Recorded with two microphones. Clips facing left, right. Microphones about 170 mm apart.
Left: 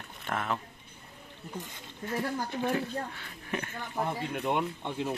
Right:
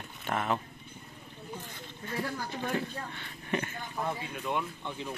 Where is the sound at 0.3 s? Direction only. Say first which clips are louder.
Right 2 dB; 5° right (ahead or behind).